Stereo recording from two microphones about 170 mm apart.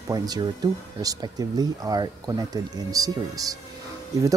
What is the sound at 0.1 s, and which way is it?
Speech, 25° right (ahead or behind).